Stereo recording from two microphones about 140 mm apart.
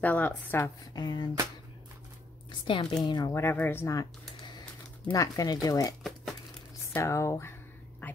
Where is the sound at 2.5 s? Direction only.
35° left (ahead or behind).